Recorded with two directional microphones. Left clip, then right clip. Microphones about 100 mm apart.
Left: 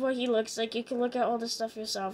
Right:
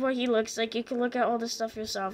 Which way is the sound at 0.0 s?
Centre (ahead or behind).